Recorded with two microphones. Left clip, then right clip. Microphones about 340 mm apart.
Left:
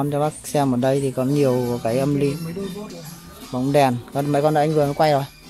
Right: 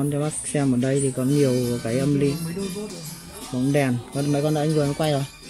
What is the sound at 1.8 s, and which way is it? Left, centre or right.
Speech, left.